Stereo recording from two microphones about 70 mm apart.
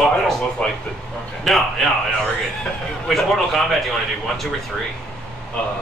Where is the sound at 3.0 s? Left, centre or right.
Centre.